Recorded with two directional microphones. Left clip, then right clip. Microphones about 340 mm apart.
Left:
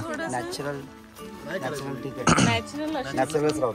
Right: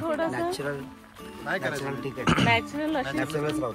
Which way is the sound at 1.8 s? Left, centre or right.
Centre.